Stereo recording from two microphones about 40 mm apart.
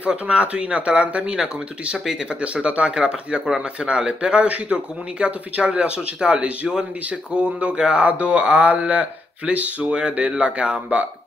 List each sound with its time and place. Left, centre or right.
0.1 s speech: right
1.3 s speech: centre
2.4 s speech: right
8.0 s speech: right